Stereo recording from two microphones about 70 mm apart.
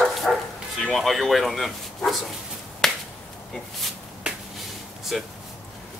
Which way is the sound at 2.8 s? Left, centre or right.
Centre.